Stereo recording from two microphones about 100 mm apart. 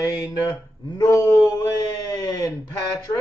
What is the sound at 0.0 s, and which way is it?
Speech, 35° left (ahead or behind).